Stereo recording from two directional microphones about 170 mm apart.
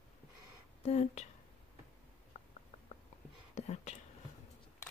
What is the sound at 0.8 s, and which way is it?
Speech, 40° left (ahead or behind).